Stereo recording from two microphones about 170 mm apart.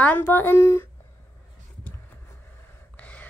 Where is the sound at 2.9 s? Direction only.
10° left (ahead or behind).